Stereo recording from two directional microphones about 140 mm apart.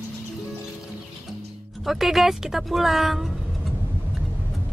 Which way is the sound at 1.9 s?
Centre (ahead or behind).